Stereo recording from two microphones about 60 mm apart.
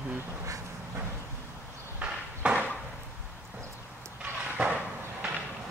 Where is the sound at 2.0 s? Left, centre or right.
Right.